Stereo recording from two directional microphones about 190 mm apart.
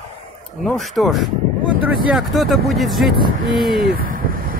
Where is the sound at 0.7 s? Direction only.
Centre (ahead or behind).